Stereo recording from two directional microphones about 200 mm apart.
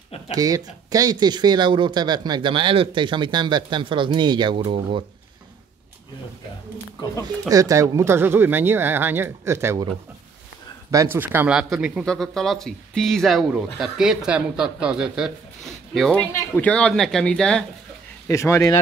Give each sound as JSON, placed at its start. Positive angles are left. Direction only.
{"t": 0.3, "sound": "speech", "side_deg": -20}
{"t": 7.4, "sound": "speech", "side_deg": -15}
{"t": 10.9, "sound": "speech", "side_deg": -15}
{"t": 18.3, "sound": "speech", "side_deg": 15}